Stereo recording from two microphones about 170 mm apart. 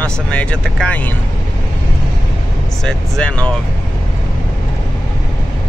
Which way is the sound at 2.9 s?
5° left (ahead or behind).